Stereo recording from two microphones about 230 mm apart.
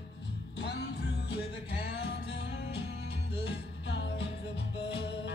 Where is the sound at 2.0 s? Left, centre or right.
Left.